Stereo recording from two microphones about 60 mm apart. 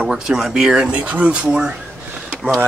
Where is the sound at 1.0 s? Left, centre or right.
Right.